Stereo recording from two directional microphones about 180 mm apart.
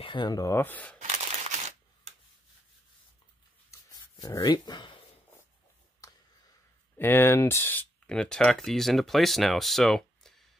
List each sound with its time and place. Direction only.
0.0 s speech: 25° left (ahead or behind); by 0.9 s 10° left (ahead or behind)
0.9 s single-lens reflex camera: 40° right (ahead or behind)
3.7 s dog: 15° left (ahead or behind)
4.4 s speech: 25° left (ahead or behind)
7.0 s speech: 15° left (ahead or behind)